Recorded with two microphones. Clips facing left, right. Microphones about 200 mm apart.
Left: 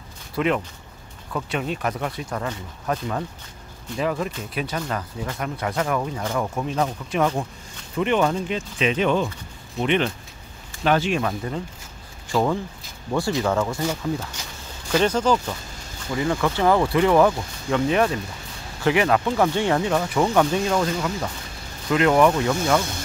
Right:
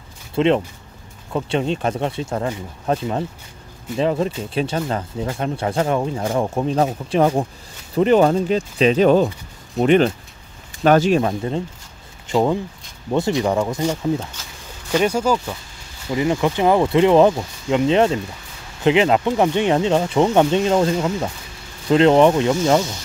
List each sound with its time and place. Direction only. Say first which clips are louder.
0.3 s speech: right 6 dB; 25° right (ahead or behind); by 15.5 s 10° right (ahead or behind)
16.1 s speech: right 4 dB; 20° right (ahead or behind)